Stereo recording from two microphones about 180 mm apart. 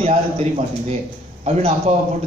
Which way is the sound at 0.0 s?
35° right (ahead or behind).